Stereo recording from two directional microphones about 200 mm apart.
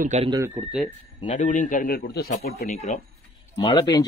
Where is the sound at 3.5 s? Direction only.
20° left (ahead or behind).